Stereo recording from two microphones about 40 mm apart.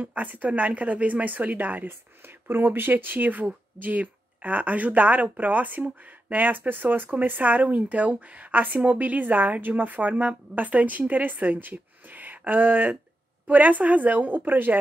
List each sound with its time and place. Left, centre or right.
0.0 s speech: right
2.2 s speech: right